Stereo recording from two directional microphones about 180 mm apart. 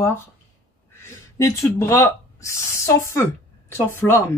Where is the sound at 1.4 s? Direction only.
15° left (ahead or behind).